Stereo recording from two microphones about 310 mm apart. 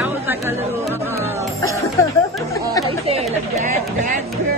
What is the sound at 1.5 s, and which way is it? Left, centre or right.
Music, centre.